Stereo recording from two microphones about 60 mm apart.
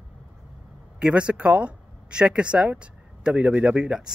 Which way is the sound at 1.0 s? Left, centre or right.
Centre.